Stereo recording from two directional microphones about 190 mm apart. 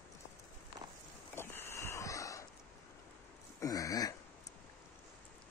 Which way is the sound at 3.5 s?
15° left (ahead or behind).